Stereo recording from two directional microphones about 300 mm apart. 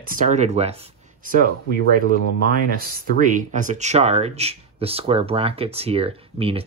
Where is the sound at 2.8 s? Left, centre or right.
Right.